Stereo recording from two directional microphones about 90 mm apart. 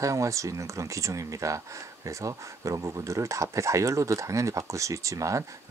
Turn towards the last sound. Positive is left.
turn(degrees=-35)  # may be behind; listen again after turning